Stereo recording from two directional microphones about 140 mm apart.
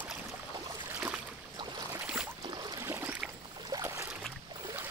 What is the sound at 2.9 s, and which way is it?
Boat, 15° right (ahead or behind).